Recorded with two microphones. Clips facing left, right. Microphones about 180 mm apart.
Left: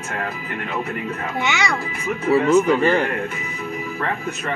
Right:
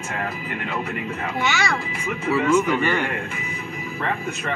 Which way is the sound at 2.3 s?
30° left (ahead or behind).